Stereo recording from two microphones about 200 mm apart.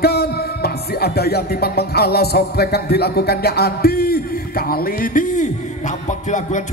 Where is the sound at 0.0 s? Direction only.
50° left (ahead or behind).